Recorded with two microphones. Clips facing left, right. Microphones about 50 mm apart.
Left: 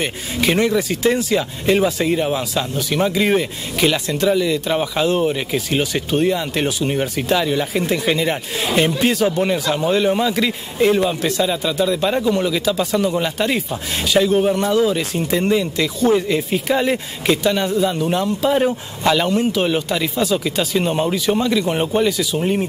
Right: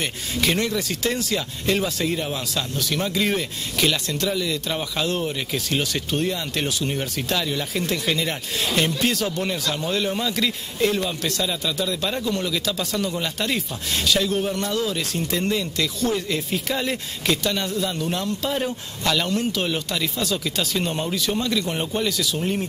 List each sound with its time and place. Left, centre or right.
0.0 s speech: centre